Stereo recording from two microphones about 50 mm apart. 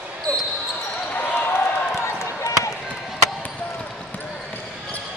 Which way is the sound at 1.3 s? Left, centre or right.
Left.